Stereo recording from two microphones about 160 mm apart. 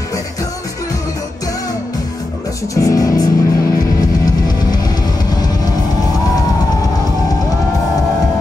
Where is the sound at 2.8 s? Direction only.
20° left (ahead or behind).